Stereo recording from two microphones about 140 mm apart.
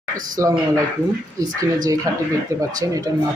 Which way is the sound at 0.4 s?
20° right (ahead or behind).